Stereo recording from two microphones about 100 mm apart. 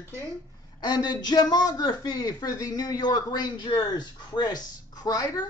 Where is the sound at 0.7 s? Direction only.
45° left (ahead or behind).